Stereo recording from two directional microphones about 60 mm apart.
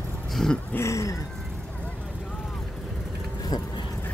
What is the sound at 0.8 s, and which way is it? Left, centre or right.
Speech, left.